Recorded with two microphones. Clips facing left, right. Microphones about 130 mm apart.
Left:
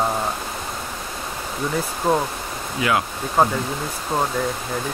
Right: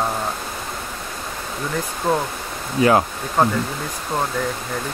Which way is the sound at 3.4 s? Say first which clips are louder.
Even; 10° left (ahead or behind).